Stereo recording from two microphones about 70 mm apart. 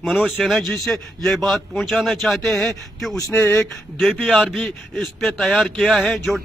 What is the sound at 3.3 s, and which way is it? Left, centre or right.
Speech, left.